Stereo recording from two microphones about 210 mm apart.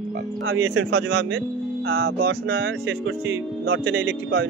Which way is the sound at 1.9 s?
75° right (ahead or behind).